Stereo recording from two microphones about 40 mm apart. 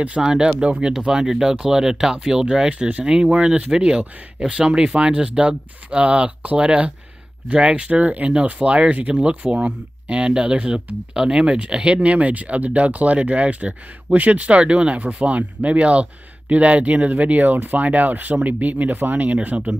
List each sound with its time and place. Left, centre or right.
0.0 s speech: right
0.6 s speech: right
7.9 s speech: right
19.4 s speech: right